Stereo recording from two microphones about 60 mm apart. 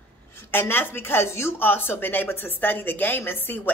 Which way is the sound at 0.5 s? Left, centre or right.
Left.